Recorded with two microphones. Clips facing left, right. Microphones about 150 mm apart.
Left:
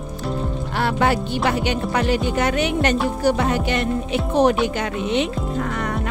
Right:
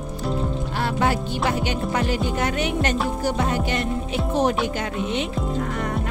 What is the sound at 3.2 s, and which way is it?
Music, 70° left (ahead or behind).